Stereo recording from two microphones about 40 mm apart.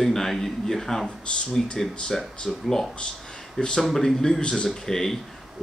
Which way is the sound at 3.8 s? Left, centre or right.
Centre.